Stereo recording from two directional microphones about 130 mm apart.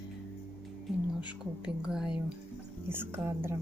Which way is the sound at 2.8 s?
20° right (ahead or behind).